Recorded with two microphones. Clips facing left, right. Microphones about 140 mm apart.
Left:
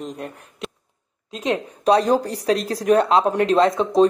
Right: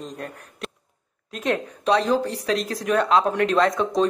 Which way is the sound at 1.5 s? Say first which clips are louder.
Left 4 dB; 40° left (ahead or behind).